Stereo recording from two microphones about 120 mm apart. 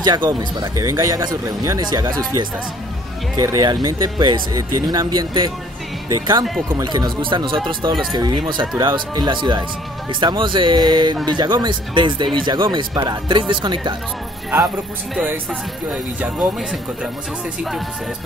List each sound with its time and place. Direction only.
0.0 s speech: 35° right (ahead or behind)
15.9 s speech: 10° right (ahead or behind)